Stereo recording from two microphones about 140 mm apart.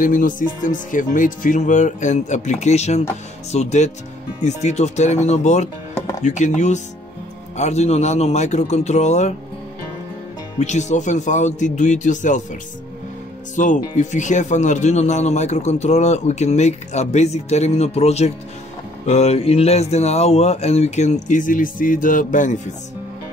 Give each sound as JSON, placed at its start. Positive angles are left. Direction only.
{"t": 0.0, "sound": "speech", "side_deg": 75}
{"t": 10.6, "sound": "speech", "side_deg": 55}
{"t": 13.6, "sound": "speech", "side_deg": 65}